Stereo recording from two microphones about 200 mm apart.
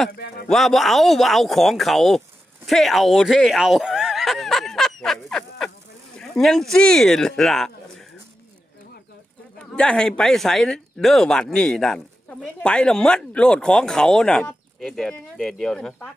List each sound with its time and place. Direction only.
0.1 s speech: 50° left (ahead or behind)
0.5 s speech: centre (ahead or behind)
9.6 s speech: 5° left (ahead or behind)